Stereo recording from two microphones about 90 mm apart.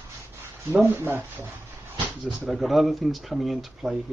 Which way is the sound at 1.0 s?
25° right (ahead or behind).